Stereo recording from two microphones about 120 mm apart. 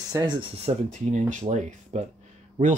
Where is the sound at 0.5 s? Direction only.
65° right (ahead or behind).